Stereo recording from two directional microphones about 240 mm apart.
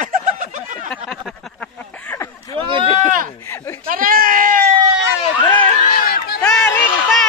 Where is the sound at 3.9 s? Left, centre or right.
Right.